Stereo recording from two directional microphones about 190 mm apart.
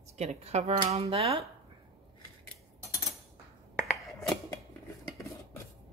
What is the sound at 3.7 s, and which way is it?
Finger snapping, centre (ahead or behind).